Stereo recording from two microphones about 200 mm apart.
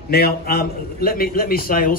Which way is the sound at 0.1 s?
50° left (ahead or behind).